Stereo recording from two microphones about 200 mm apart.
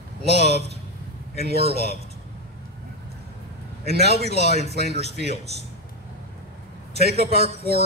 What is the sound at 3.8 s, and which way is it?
Speech, 55° right (ahead or behind).